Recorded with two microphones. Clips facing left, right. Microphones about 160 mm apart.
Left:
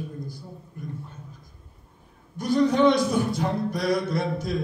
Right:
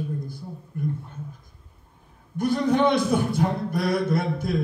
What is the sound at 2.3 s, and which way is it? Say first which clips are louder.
Speech: even; 55° right (ahead or behind).